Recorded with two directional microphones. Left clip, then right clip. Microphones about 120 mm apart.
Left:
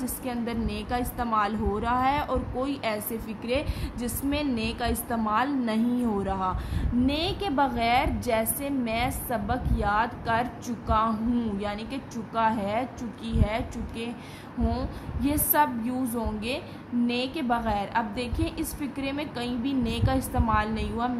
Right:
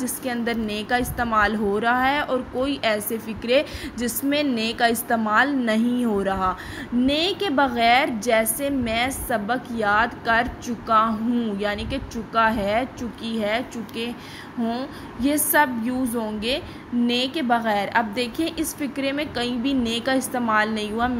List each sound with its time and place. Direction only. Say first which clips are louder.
0.0 s a woman's voice: right 6 dB; 35° right (ahead or behind)
15.2 s a woman's voice: right 5 dB; 35° right (ahead or behind)